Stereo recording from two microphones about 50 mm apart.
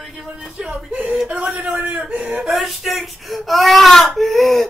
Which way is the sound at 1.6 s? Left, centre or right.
Right.